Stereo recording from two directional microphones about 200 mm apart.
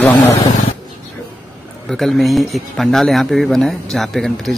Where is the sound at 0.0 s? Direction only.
10° left (ahead or behind).